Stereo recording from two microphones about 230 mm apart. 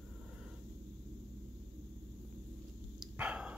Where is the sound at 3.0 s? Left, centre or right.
Centre.